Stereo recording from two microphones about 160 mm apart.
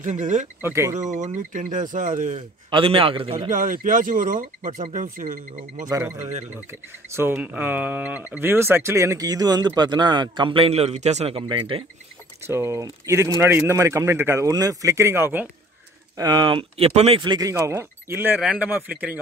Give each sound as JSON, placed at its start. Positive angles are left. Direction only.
{"t": 0.0, "sound": "speech", "side_deg": -50}
{"t": 0.6, "sound": "speech", "side_deg": -15}
{"t": 0.9, "sound": "speech", "side_deg": -50}
{"t": 2.7, "sound": "speech", "side_deg": -35}
{"t": 3.4, "sound": "speech", "side_deg": -55}
{"t": 5.9, "sound": "speech", "side_deg": -20}
{"t": 12.4, "sound": "speech", "side_deg": -15}
{"t": 17.2, "sound": "speech", "side_deg": -25}